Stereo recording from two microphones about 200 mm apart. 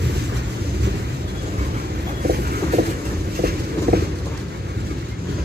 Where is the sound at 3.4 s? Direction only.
50° right (ahead or behind).